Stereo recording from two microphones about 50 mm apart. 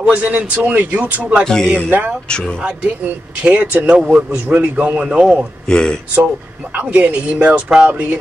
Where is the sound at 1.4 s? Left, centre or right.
Centre.